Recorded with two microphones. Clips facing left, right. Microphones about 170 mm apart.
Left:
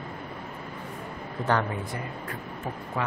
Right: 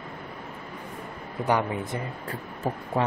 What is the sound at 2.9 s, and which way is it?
Speech, 35° right (ahead or behind).